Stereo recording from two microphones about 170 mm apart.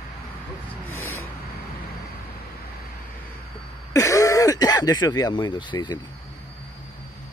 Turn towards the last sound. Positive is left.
turn(degrees=25)  # may be behind; listen again after turning